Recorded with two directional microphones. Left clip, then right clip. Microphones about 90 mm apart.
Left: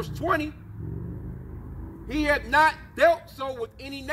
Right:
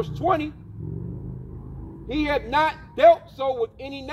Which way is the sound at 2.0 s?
45° left (ahead or behind).